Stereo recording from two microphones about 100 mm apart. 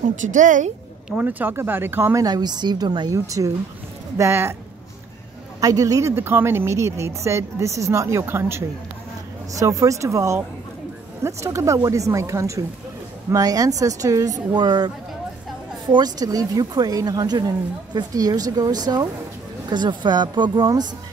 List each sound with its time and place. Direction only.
1.1 s a woman's voice: 20° right (ahead or behind)
2.2 s speech: 45° right (ahead or behind)
3.1 s a woman's voice: 35° right (ahead or behind)
5.6 s a woman's voice: 35° right (ahead or behind)
15.9 s a woman's voice: 40° right (ahead or behind)